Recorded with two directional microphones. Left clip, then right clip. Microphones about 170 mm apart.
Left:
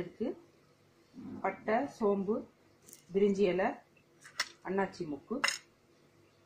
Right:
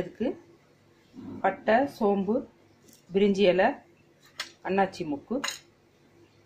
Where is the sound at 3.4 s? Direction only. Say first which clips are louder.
Right 9 dB; 10° right (ahead or behind).